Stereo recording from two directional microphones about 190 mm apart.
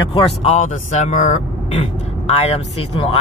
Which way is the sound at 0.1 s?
35° left (ahead or behind).